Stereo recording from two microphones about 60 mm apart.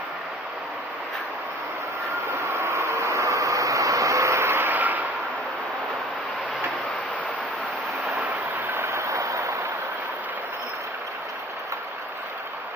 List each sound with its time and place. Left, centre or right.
2.1 s vehicle: right
4.6 s vehicle: right
8.6 s a sound: right